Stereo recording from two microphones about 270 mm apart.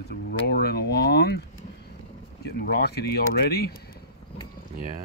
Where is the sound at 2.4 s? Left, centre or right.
Left.